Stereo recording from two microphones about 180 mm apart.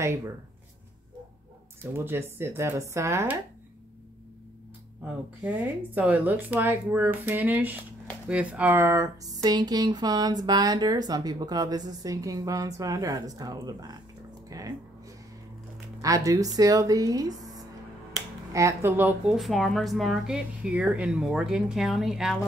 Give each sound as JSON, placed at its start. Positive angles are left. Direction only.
{"t": 2.0, "sound": "speech", "side_deg": -10}
{"t": 5.0, "sound": "speech", "side_deg": -5}
{"t": 16.3, "sound": "speech", "side_deg": -20}